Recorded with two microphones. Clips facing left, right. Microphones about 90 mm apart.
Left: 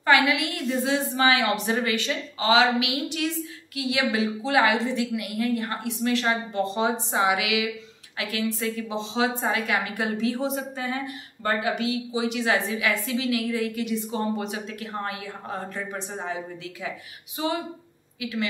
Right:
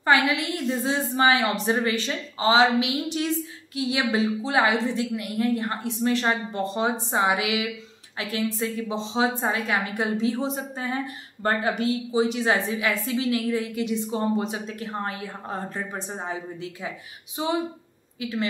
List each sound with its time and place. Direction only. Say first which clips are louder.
0.0 s a woman's voice: even; 30° right (ahead or behind)
18.2 s a woman's voice: right 1 dB; 30° right (ahead or behind)